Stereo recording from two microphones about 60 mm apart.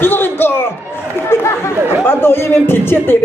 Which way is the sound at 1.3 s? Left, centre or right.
Left.